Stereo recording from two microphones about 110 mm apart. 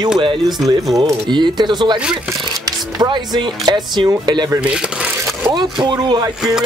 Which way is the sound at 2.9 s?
40° right (ahead or behind).